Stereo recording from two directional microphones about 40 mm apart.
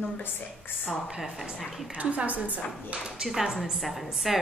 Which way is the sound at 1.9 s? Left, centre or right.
Right.